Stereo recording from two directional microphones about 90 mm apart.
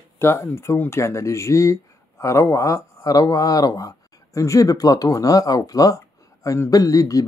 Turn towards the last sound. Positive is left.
turn(degrees=40)  # may be behind; listen again after turning